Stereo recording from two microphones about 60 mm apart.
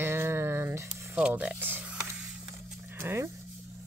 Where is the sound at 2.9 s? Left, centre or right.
Right.